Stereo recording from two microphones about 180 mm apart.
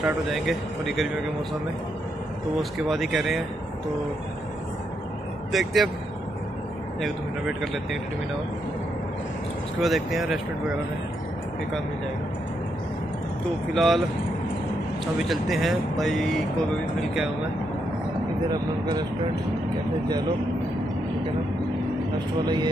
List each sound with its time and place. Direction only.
0.0 s speech: centre (ahead or behind)
2.9 s speech: centre (ahead or behind)
5.5 s speech: centre (ahead or behind)
7.0 s speech: centre (ahead or behind)
9.8 s speech: centre (ahead or behind)
13.7 s speech: centre (ahead or behind)
15.1 s speech: centre (ahead or behind)
18.5 s speech: 25° right (ahead or behind)